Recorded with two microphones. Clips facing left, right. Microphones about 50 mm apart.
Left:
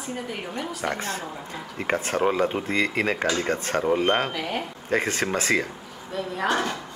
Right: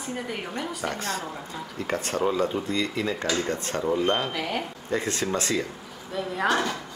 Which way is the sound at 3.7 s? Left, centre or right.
Left.